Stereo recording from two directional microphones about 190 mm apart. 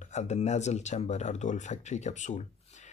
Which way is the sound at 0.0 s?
35° left (ahead or behind).